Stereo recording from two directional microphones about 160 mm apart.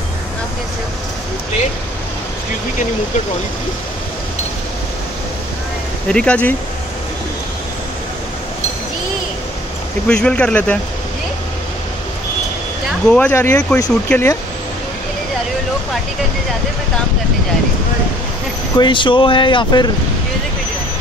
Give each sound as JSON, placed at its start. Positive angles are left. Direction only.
{"t": 6.0, "sound": "speech", "side_deg": 5}
{"t": 10.0, "sound": "speech", "side_deg": 5}
{"t": 13.1, "sound": "speech", "side_deg": 10}
{"t": 18.8, "sound": "speech", "side_deg": 30}